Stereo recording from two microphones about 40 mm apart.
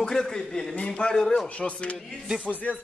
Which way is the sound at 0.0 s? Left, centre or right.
Centre.